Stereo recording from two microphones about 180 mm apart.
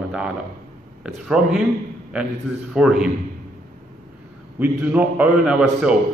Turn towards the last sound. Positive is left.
turn(degrees=-5)  # may be behind; listen again after turning